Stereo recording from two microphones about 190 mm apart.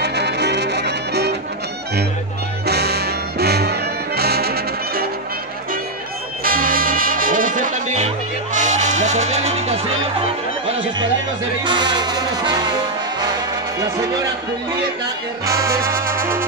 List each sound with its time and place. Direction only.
0.0 s music: 60° right (ahead or behind)
2.6 s music: 60° right (ahead or behind)
6.4 s music: 50° right (ahead or behind)
11.6 s music: 25° right (ahead or behind)
15.4 s music: 15° right (ahead or behind)